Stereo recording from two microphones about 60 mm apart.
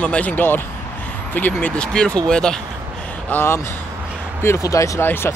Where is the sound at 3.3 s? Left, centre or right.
Left.